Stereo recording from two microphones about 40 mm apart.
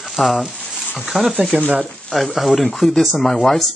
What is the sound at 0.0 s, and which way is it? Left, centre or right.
Speech, centre.